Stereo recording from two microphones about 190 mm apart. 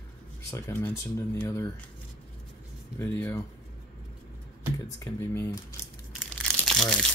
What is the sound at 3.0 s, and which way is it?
Speech, 10° left (ahead or behind).